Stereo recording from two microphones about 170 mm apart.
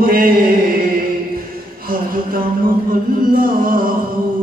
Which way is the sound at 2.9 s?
55° right (ahead or behind).